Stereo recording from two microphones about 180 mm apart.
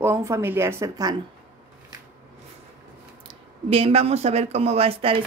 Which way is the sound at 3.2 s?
35° right (ahead or behind).